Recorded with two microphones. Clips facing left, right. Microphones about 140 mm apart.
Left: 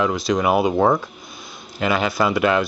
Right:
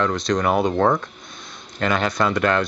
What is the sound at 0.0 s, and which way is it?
Speech, 5° left (ahead or behind).